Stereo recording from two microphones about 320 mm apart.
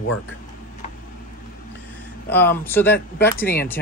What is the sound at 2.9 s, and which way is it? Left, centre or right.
Speech, left.